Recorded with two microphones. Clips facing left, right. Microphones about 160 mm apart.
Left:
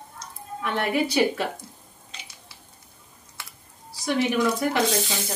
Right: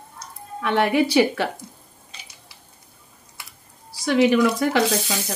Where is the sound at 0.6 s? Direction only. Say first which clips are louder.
Right 5 dB; 90° right.